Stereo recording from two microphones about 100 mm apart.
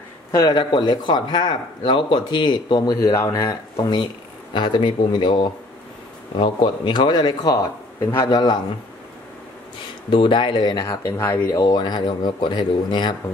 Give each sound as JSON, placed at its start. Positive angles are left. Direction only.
{"t": 0.3, "sound": "speech", "side_deg": 40}
{"t": 3.0, "sound": "speech", "side_deg": 30}
{"t": 4.6, "sound": "speech", "side_deg": 50}
{"t": 10.0, "sound": "speech", "side_deg": 55}
{"t": 10.9, "sound": "speech", "side_deg": 25}
{"t": 11.5, "sound": "speech", "side_deg": 45}